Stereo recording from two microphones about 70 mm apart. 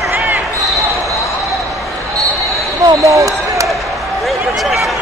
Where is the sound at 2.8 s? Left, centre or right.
Right.